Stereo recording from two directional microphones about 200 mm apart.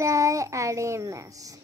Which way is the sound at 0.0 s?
15° right (ahead or behind).